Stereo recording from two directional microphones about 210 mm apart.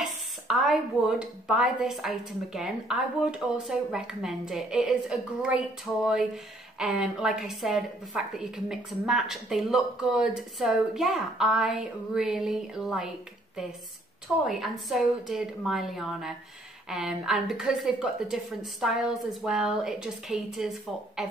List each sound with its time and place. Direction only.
0.0 s a woman's voice: centre (ahead or behind)
14.4 s a woman's voice: centre (ahead or behind)